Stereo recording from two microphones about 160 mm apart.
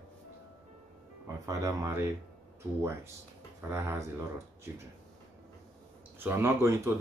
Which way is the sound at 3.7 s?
15° right (ahead or behind).